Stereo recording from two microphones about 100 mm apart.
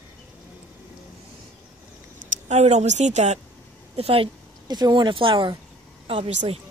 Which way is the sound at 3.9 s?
70° right (ahead or behind).